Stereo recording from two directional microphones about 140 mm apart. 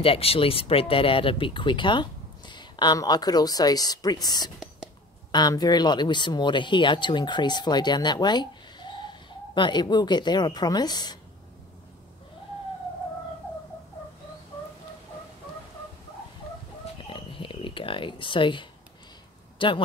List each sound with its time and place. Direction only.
0.0 s speech: 45° left (ahead or behind)
17.0 s a sound: 40° left (ahead or behind)
19.6 s speech: 35° left (ahead or behind)